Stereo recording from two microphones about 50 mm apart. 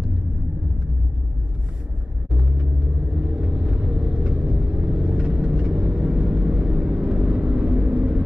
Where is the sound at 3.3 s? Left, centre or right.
Right.